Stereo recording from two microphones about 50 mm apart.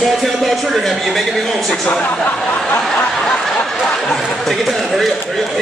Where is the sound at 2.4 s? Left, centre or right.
Left.